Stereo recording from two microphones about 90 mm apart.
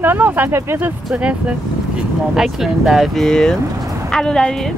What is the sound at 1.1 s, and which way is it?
A woman's voice, 10° right (ahead or behind).